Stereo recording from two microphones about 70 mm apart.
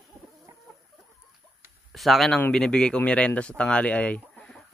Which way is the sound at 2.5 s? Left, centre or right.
Centre.